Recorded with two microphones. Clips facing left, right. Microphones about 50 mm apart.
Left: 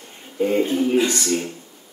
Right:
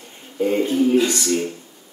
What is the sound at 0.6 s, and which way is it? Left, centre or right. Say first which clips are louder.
Speech: right 4 dB; left.